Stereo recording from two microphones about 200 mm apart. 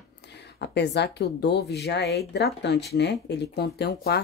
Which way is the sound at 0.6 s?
60° left (ahead or behind).